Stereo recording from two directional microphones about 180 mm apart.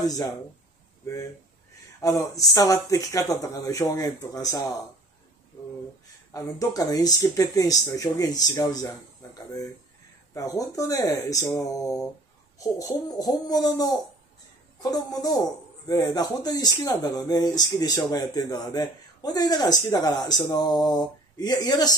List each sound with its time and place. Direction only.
0.0 s speech: 20° left (ahead or behind)
6.3 s speech: 20° left (ahead or behind)